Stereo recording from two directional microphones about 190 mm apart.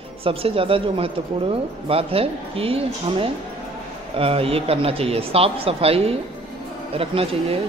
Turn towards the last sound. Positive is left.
turn(degrees=-30)  # may be behind; listen again after turning